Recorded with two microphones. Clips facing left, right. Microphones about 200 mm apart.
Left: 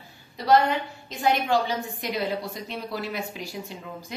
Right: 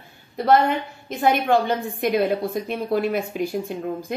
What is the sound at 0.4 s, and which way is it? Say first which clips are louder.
A woman's voice: right 3 dB; 55° right (ahead or behind).